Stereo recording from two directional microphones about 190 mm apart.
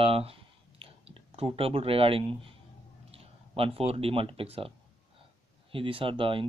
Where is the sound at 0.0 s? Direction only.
30° right (ahead or behind).